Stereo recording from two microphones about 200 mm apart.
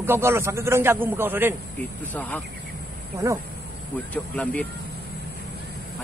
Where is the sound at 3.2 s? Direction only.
15° right (ahead or behind).